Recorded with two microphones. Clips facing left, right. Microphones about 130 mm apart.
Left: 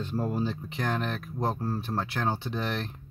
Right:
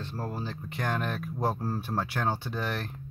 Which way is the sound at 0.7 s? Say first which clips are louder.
Left 1 dB; centre (ahead or behind).